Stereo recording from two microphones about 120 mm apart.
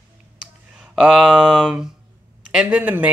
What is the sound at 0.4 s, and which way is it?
Speech, 5° right (ahead or behind).